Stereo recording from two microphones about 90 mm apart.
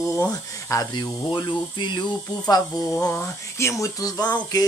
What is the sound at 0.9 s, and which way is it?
Speech, 60° left (ahead or behind).